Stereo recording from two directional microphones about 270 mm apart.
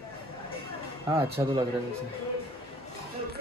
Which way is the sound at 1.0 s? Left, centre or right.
Centre.